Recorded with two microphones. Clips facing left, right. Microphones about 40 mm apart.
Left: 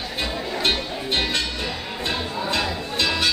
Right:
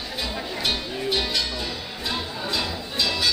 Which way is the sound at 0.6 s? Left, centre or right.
Left.